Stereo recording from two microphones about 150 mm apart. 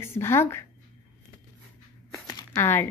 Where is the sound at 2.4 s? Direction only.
15° left (ahead or behind).